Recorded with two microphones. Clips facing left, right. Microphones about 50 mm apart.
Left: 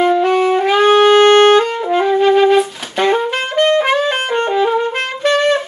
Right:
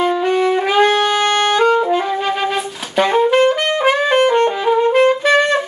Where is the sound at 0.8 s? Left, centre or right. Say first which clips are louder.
Left 6 dB; centre.